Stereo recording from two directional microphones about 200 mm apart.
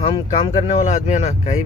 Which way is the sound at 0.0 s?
25° left (ahead or behind).